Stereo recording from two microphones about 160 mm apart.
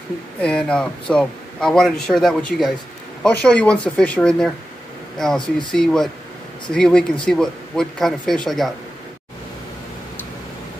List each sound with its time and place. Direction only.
0.4 s a man's voice: 5° left (ahead or behind)